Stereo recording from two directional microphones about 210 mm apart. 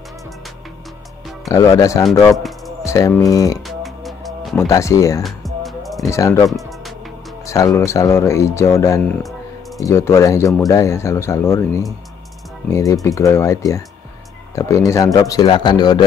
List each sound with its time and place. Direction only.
1.5 s speech: 15° left (ahead or behind)
3.6 s music: centre (ahead or behind)
4.6 s speech: 15° left (ahead or behind)
5.2 s music: centre (ahead or behind)
6.0 s speech: 15° left (ahead or behind)